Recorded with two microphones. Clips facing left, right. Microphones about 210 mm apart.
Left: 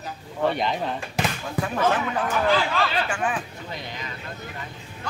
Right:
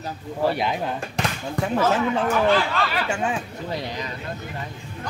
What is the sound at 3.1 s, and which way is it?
Speech, 25° right (ahead or behind).